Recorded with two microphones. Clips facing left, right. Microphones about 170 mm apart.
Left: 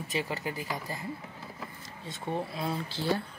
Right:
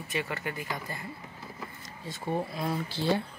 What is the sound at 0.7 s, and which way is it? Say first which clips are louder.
Speech: left 1 dB; 10° left (ahead or behind).